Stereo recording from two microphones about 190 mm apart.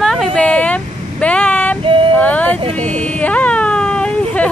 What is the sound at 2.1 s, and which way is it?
Speech, 10° left (ahead or behind).